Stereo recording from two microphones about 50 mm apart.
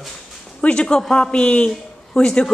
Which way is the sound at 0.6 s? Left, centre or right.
Left.